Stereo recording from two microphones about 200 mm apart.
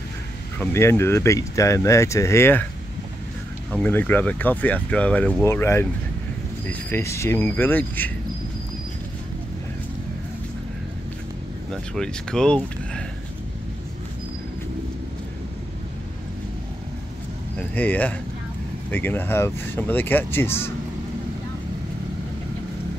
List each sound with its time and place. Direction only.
0.6 s speech: 15° left (ahead or behind)
3.7 s speech: 10° left (ahead or behind)
11.7 s speech: 5° left (ahead or behind)
17.6 s speech: 10° left (ahead or behind)